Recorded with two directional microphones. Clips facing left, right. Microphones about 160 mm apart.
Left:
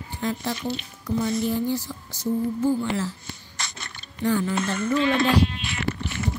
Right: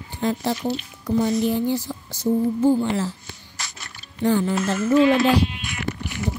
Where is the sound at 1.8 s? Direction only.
30° right (ahead or behind).